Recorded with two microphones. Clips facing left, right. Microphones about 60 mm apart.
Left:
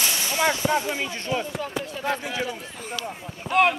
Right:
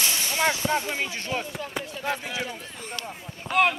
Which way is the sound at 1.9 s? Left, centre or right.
Left.